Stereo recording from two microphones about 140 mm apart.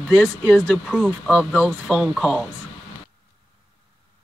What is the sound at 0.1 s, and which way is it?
Speech, centre (ahead or behind).